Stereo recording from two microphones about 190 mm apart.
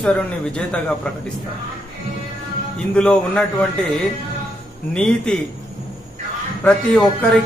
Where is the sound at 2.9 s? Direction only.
5° left (ahead or behind).